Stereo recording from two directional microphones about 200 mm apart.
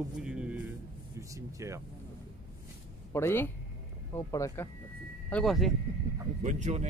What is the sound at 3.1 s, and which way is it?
Speech, 10° left (ahead or behind).